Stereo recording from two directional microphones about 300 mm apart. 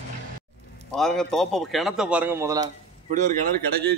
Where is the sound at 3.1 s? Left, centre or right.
Right.